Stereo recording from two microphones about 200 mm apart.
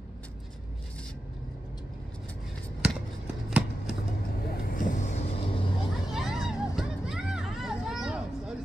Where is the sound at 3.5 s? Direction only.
5° right (ahead or behind).